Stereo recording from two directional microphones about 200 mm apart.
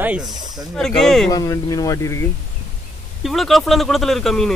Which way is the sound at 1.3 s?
15° left (ahead or behind).